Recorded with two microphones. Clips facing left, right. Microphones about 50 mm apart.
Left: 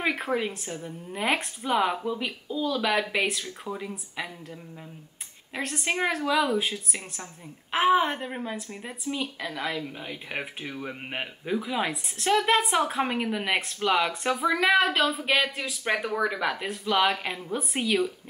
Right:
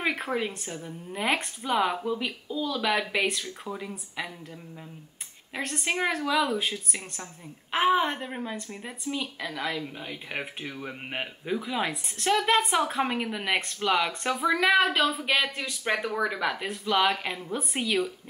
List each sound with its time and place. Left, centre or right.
0.0 s speech: centre
5.5 s speech: centre